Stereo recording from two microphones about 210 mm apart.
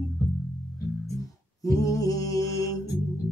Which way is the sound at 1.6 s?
15° left (ahead or behind).